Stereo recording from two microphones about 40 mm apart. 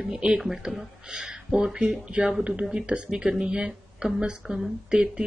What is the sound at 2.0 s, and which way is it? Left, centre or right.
Speech, right.